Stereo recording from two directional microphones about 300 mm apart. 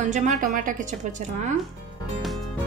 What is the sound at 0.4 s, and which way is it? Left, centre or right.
Speech, right.